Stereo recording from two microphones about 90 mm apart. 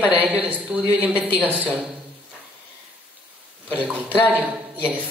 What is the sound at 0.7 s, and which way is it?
Speech, 5° right (ahead or behind).